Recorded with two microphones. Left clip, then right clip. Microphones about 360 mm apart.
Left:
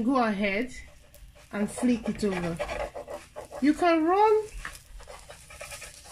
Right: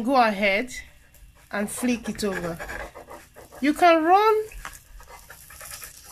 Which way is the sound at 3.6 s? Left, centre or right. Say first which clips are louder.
Right 5 dB; right.